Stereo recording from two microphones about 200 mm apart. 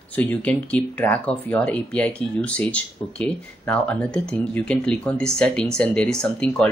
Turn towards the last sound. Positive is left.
turn(degrees=5)  # may be behind; listen again after turning